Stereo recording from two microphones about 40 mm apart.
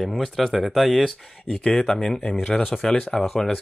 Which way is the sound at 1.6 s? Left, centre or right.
Centre.